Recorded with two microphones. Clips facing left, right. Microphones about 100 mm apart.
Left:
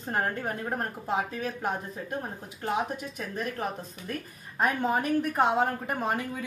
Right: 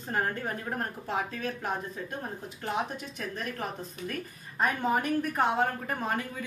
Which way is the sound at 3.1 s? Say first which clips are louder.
Left 2 dB; 5° left (ahead or behind).